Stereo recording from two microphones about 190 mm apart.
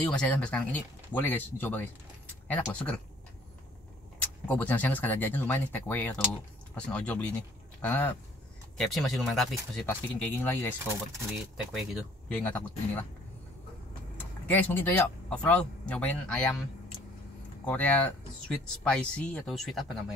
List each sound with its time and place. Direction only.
0.1 s speech: 5° left (ahead or behind)
4.5 s speech: 10° left (ahead or behind)
11.3 s speech: centre (ahead or behind)
14.5 s speech: 10° left (ahead or behind)
17.6 s speech: 10° left (ahead or behind)